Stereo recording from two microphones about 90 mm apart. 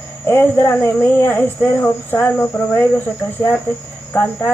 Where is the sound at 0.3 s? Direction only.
25° left (ahead or behind).